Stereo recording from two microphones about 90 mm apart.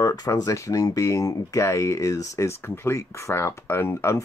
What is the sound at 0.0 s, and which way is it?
Speech, 45° left (ahead or behind).